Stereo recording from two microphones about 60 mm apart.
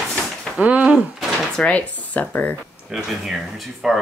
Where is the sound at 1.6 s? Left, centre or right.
Left.